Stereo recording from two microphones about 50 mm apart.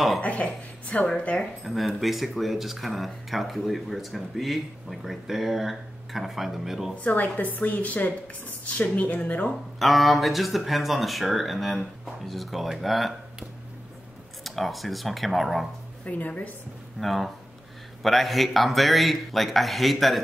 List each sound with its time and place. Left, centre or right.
0.2 s speech: left
1.4 s speech: centre
7.0 s a woman's voice: left
9.8 s speech: centre
14.4 s speech: centre
16.1 s a woman's voice: left
17.0 s speech: centre